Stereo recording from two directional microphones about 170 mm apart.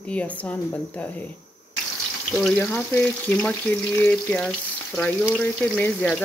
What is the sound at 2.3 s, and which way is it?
Speech, 5° left (ahead or behind).